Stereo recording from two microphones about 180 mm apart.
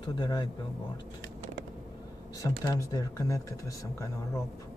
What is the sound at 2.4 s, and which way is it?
Speech, 20° left (ahead or behind).